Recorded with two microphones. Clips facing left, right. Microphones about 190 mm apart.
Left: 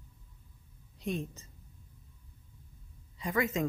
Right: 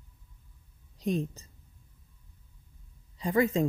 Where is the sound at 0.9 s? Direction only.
35° right (ahead or behind).